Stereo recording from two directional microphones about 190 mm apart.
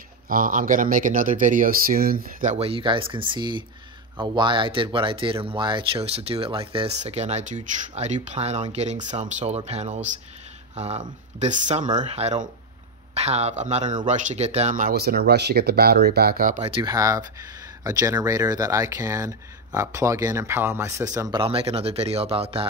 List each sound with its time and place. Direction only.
0.3 s speech: 45° right (ahead or behind)
2.5 s speech: 30° right (ahead or behind); by 16.6 s 45° right (ahead or behind)
16.6 s speech: 25° right (ahead or behind)
21.4 s speech: 30° right (ahead or behind)